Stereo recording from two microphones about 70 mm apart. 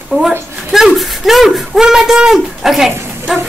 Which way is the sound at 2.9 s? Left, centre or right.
Right.